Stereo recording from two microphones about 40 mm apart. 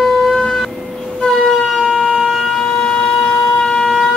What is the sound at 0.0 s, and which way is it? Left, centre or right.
Shofar, centre.